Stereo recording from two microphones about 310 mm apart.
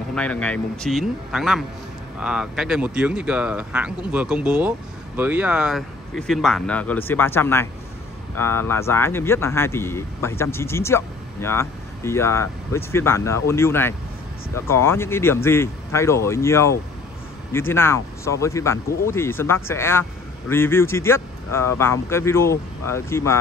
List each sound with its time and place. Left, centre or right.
0.1 s speech: centre